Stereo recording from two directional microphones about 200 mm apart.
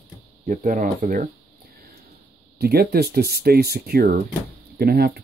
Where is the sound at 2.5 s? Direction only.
50° right (ahead or behind).